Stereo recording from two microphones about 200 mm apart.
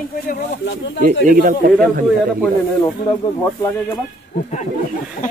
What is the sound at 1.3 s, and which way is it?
Speech, 45° right (ahead or behind).